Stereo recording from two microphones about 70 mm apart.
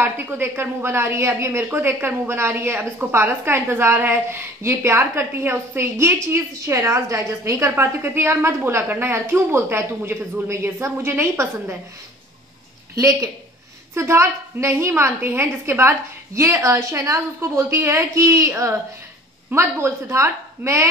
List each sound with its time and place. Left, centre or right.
0.0 s a woman's voice: right
12.9 s a woman's voice: right